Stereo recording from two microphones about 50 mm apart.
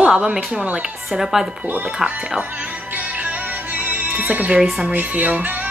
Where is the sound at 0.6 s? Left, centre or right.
Right.